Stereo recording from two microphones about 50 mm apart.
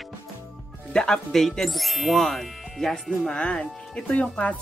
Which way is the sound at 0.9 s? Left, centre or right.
Centre.